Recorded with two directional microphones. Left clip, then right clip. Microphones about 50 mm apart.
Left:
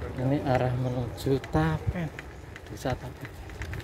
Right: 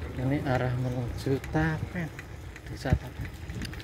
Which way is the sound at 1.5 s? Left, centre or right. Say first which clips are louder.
Left 2 dB; centre.